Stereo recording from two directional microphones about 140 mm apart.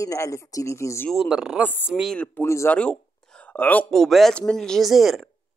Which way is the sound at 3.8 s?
Centre (ahead or behind).